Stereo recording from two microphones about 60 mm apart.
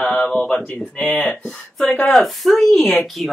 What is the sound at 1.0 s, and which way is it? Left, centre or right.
Speech, left.